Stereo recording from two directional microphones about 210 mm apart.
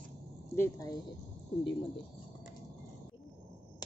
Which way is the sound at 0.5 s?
15° left (ahead or behind).